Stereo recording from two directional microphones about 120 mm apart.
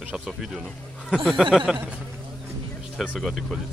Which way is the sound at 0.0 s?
5° right (ahead or behind).